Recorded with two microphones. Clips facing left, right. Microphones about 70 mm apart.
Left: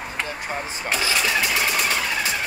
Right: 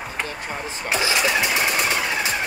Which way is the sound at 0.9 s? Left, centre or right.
Centre.